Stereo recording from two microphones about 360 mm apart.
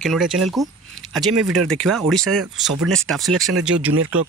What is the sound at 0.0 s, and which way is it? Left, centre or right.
Speech, centre.